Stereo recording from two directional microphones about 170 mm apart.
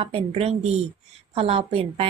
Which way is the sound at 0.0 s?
35° right (ahead or behind).